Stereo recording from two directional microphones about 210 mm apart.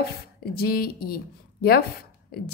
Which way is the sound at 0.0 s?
45° left (ahead or behind).